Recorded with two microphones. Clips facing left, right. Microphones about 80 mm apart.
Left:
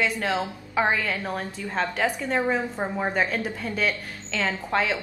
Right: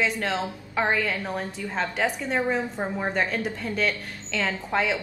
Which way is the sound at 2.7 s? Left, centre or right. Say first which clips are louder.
Left 1 dB; centre.